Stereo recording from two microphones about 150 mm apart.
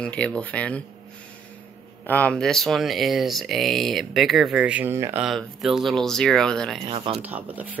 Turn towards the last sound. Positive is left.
turn(degrees=-10)  # may be behind; listen again after turning